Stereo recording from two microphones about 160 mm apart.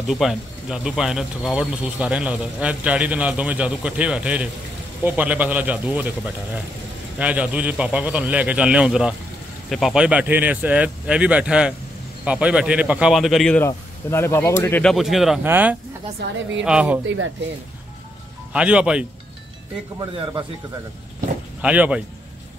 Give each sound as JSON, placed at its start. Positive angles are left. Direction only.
{"t": 0.1, "sound": "speech", "side_deg": 0}
{"t": 7.2, "sound": "speech", "side_deg": -10}
{"t": 13.6, "sound": "speech", "side_deg": 15}
{"t": 18.5, "sound": "speech", "side_deg": -5}
{"t": 20.0, "sound": "speech", "side_deg": -30}
{"t": 21.5, "sound": "speech", "side_deg": -10}